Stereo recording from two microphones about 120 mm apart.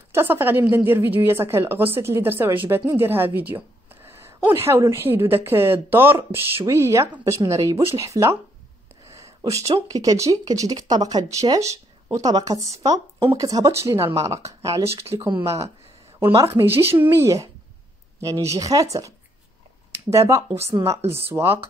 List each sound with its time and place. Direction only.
0.1 s a woman's voice: 20° right (ahead or behind)
9.1 s a sound: 25° right (ahead or behind)
9.7 s a woman's voice: 30° right (ahead or behind)